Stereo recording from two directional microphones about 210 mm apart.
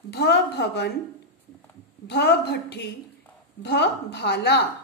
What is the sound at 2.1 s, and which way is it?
A woman's voice, 55° left (ahead or behind).